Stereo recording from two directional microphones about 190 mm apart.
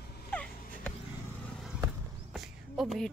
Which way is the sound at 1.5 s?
Centre (ahead or behind).